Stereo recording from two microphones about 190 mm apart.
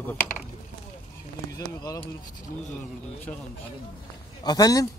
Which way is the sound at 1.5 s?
20° left (ahead or behind).